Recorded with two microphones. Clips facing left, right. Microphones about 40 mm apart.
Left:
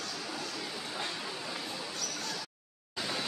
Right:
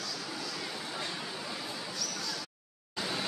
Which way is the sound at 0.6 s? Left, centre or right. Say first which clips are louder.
Right 1 dB; centre.